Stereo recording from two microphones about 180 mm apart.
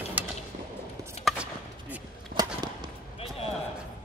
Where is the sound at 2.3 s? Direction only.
50° right (ahead or behind).